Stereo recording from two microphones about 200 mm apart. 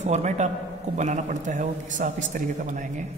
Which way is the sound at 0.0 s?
35° right (ahead or behind).